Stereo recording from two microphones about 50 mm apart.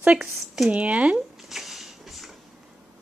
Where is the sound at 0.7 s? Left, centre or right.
Right.